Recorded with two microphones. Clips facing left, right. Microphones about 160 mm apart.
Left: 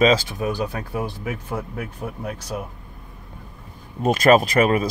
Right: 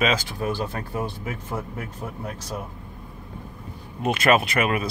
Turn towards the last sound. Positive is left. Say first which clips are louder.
# left 5 dB
turn(degrees=35)  # may be behind; listen again after turning